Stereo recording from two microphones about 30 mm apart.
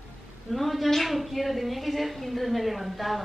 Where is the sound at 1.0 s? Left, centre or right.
Centre.